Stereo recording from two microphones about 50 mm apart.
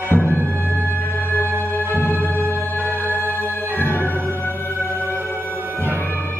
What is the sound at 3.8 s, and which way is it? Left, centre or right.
Music, left.